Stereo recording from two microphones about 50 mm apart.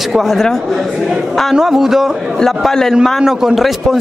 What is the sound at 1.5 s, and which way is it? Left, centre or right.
Speech, centre.